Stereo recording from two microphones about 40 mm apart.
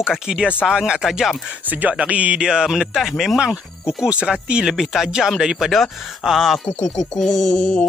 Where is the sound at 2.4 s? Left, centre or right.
Centre.